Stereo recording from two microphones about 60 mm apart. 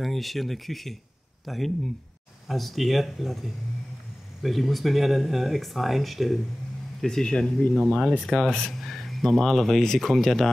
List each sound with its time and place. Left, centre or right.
0.0 s speech: centre